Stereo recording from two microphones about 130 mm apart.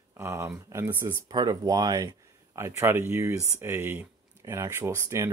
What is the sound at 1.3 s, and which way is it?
Speech, 30° right (ahead or behind).